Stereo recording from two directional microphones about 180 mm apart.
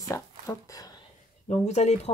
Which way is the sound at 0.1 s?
15° left (ahead or behind).